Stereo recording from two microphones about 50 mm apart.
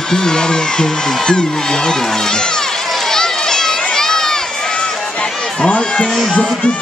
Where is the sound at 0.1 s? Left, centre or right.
Centre.